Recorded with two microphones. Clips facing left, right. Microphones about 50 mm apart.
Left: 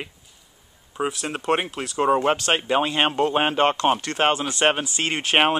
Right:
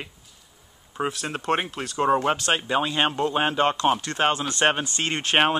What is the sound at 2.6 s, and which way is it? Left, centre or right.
Speech, left.